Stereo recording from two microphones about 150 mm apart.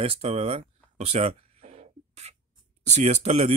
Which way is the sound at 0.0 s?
40° right (ahead or behind).